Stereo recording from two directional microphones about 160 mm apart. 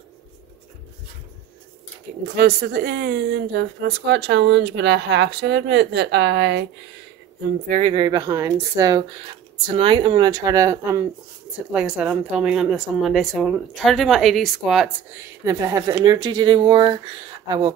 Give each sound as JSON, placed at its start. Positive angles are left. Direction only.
{"t": 2.3, "sound": "a woman's voice", "side_deg": -70}
{"t": 7.6, "sound": "speech", "side_deg": -50}
{"t": 7.9, "sound": "speech", "side_deg": -30}
{"t": 9.7, "sound": "speech", "side_deg": -30}
{"t": 11.7, "sound": "speech", "side_deg": -5}
{"t": 15.1, "sound": "speech", "side_deg": -20}